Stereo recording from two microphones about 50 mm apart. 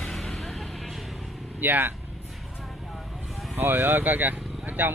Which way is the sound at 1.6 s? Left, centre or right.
Right.